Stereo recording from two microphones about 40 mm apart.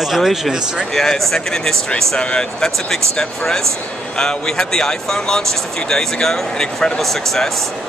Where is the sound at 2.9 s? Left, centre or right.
Centre.